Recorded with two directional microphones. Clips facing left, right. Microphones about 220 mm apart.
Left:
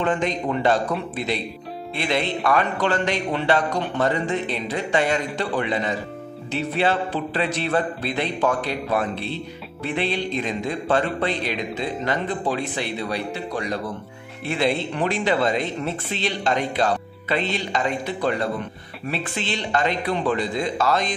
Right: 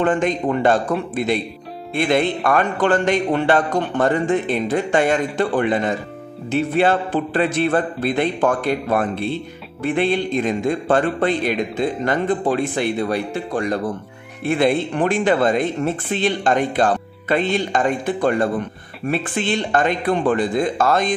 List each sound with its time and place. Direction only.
0.0 s speech: 50° right (ahead or behind)